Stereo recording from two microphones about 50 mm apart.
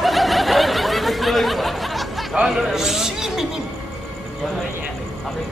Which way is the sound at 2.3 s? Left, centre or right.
Centre.